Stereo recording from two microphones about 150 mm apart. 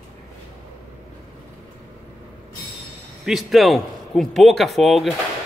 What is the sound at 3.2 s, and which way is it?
A man's voice, centre (ahead or behind).